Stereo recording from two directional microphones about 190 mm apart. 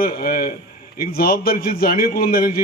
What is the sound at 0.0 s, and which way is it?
A man's voice, 50° left (ahead or behind).